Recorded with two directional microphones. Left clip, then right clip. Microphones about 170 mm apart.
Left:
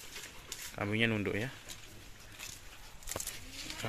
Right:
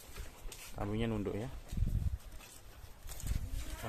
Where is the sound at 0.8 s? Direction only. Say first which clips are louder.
Left 6 dB; centre (ahead or behind).